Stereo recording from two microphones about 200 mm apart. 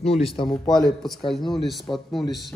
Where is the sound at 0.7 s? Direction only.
Centre (ahead or behind).